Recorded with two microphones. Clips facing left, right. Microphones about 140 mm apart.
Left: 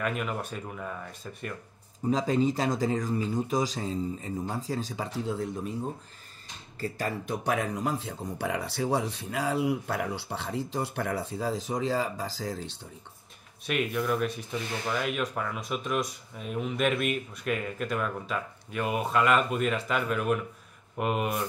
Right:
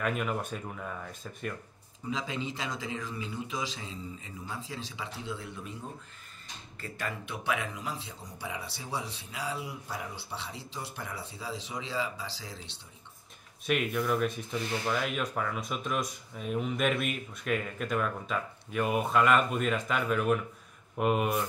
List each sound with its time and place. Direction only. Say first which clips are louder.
0.0 s speech: even; centre (ahead or behind)
2.0 s speech: left 10 dB; 40° left (ahead or behind)
6.8 s speech: left 6 dB; 35° left (ahead or behind)
13.7 s speech: left 1 dB; centre (ahead or behind)